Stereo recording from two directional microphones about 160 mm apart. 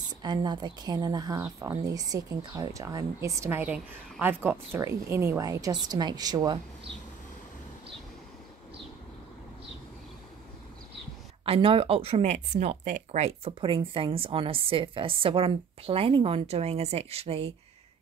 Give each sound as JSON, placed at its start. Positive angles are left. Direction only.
{"t": 0.2, "sound": "speech", "side_deg": -25}
{"t": 11.4, "sound": "a woman's voice", "side_deg": -35}